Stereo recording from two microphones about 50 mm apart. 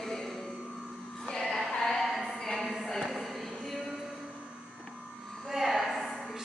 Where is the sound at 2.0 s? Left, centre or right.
Centre.